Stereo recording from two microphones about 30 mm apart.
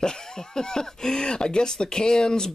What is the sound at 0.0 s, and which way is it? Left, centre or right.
Speech, left.